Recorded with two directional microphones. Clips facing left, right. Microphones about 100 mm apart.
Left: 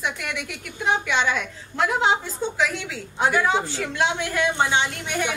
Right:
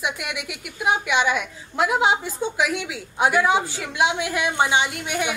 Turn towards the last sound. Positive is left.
turn(degrees=-10)  # may be behind; listen again after turning